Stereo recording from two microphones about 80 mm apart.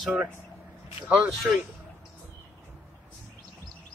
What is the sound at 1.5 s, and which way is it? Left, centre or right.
Speech, centre.